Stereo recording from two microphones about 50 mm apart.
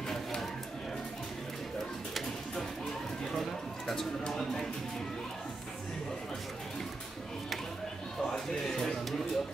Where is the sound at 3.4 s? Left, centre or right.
Centre.